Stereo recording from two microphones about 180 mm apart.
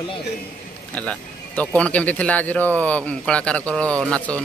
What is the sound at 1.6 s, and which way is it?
A man's voice, 10° left (ahead or behind).